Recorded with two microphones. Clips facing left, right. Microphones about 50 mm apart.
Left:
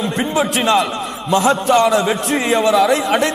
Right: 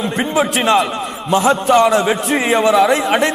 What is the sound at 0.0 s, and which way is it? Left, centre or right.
A man's voice, centre.